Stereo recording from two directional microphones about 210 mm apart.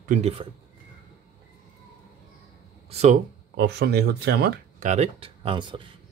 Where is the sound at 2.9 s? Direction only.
30° right (ahead or behind).